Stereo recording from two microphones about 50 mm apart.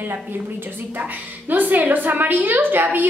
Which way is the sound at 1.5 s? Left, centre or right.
Right.